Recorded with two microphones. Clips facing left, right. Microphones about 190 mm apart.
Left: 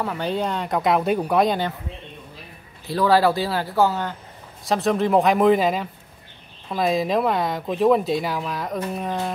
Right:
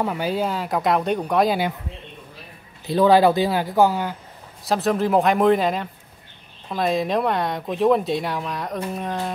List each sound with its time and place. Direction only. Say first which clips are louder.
0.0 s speech: right 1 dB; 10° right (ahead or behind)
2.9 s speech: right 3 dB; 20° right (ahead or behind)
4.6 s speech: even; centre (ahead or behind)